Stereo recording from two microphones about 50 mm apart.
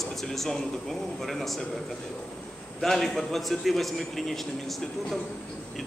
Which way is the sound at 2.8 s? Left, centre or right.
Centre.